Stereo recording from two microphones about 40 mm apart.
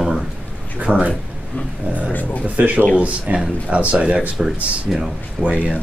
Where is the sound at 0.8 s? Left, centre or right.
Right.